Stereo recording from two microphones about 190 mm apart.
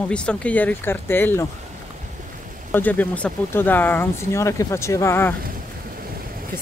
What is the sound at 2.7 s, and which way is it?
Speech, 10° left (ahead or behind).